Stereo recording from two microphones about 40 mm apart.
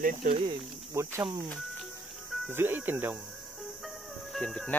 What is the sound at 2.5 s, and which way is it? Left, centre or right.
Speech, right.